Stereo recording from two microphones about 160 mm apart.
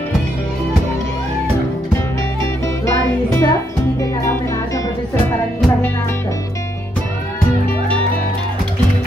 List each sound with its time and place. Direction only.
2.4 s music: 20° left (ahead or behind)